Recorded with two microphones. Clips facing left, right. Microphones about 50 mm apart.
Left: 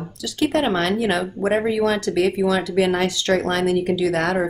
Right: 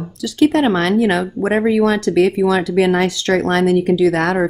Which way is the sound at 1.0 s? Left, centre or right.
Right.